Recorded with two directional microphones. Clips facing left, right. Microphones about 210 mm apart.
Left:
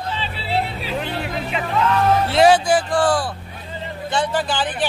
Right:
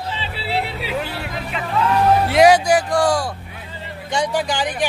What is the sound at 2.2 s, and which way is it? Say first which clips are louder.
Speech: right 1 dB; 10° right (ahead or behind).